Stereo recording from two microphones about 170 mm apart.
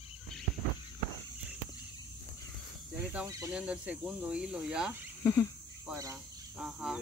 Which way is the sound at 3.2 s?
20° right (ahead or behind).